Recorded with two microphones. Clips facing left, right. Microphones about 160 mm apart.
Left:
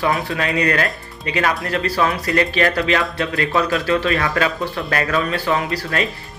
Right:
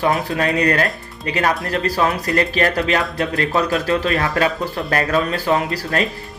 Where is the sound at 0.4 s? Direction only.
40° right (ahead or behind).